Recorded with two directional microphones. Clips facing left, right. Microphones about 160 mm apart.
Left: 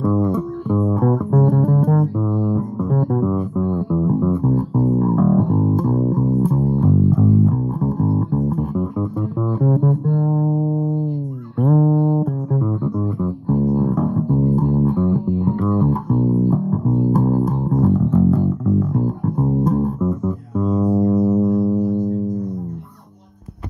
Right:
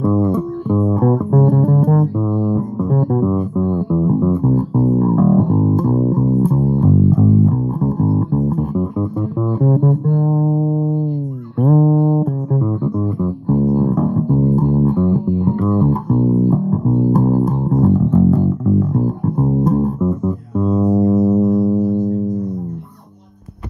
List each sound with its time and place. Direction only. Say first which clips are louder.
0.0 s music: right 3 dB; 30° right (ahead or behind)
2.1 s music: right 2 dB; 25° right (ahead or behind)
11.6 s music: right 2 dB; 30° right (ahead or behind)